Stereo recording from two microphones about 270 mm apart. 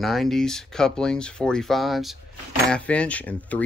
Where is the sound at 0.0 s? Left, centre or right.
Centre.